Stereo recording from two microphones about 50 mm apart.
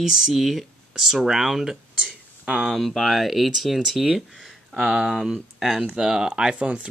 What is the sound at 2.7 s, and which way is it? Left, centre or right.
Speech, centre.